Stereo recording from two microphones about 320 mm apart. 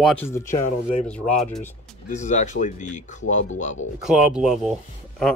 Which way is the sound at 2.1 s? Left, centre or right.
Left.